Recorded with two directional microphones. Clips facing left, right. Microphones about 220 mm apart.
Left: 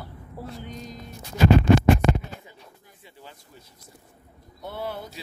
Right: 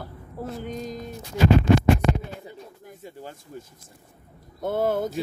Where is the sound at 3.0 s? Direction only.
45° right (ahead or behind).